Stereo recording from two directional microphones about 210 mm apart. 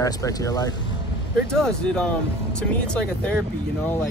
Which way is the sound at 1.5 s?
5° left (ahead or behind).